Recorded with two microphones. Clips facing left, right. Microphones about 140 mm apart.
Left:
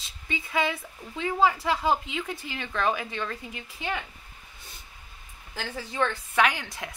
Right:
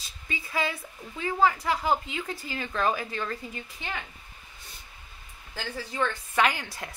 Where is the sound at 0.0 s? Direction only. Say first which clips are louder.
Left 3 dB; centre (ahead or behind).